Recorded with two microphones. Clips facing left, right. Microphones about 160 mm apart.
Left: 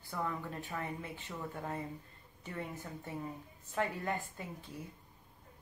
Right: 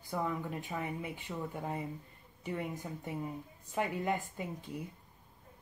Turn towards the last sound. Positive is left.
turn(degrees=-15)  # may be behind; listen again after turning